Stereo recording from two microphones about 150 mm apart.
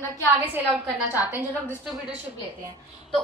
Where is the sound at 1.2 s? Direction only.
10° right (ahead or behind).